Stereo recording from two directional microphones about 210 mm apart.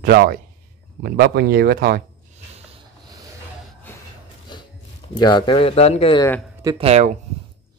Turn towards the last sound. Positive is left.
turn(degrees=-30)  # may be behind; listen again after turning